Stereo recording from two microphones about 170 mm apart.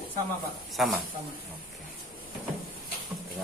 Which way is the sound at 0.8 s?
Centre (ahead or behind).